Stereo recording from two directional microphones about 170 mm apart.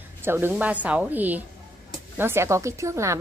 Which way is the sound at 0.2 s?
15° right (ahead or behind).